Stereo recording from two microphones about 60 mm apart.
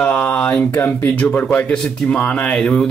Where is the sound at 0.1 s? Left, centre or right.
Left.